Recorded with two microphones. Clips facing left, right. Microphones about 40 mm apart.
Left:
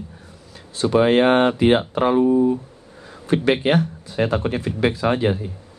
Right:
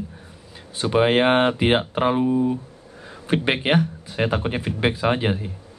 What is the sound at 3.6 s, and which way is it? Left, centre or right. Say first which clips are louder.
A man's voice: left 1 dB; centre.